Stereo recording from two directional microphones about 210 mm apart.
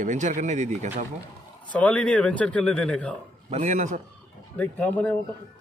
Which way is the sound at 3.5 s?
35° right (ahead or behind).